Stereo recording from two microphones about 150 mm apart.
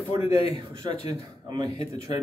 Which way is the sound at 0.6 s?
35° right (ahead or behind).